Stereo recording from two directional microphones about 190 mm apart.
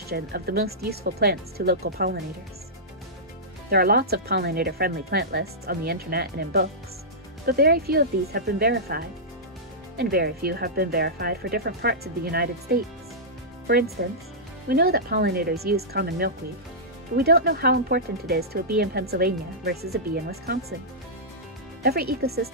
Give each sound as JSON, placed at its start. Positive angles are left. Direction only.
{"t": 0.1, "sound": "speech", "side_deg": -55}
{"t": 3.7, "sound": "speech", "side_deg": -55}
{"t": 14.0, "sound": "speech", "side_deg": -60}
{"t": 21.8, "sound": "speech", "side_deg": -55}